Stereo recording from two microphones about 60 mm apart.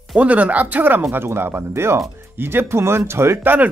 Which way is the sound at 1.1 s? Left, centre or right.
Right.